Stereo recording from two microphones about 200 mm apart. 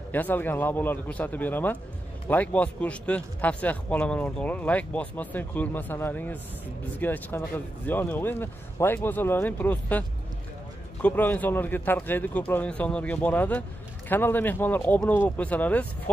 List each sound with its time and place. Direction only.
0.1 s speech: 10° left (ahead or behind)